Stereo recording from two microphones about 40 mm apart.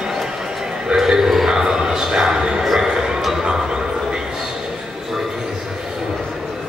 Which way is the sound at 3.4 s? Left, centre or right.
Right.